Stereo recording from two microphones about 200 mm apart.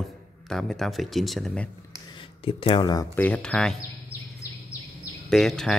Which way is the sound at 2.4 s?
25° left (ahead or behind).